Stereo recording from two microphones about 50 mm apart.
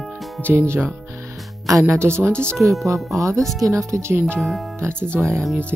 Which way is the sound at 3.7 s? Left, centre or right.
Right.